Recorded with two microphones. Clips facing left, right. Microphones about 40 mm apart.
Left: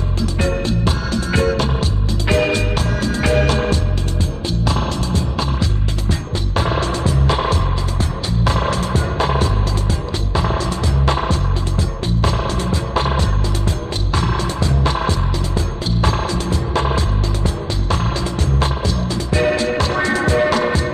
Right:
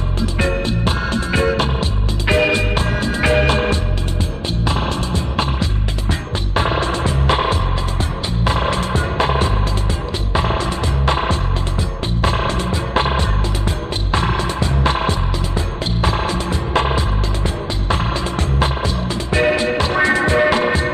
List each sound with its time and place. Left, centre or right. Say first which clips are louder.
0.4 s music: even; right
19.3 s music: right 1 dB; right